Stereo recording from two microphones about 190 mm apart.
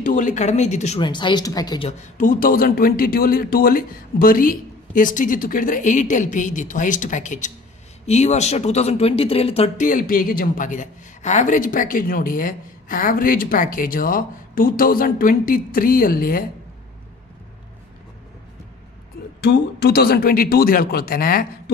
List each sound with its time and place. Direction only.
0.0 s speech: 40° left (ahead or behind)
1.0 s speech: 25° left (ahead or behind)
1.9 s a man's voice: 40° left (ahead or behind)
9.8 s a man's voice: 45° left (ahead or behind)
19.4 s a man's voice: 60° left (ahead or behind)